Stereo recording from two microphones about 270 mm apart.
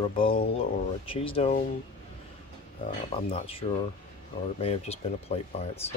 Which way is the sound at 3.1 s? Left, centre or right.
Left.